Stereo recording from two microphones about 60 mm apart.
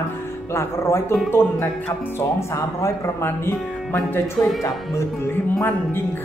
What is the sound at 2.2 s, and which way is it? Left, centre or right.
Speech, left.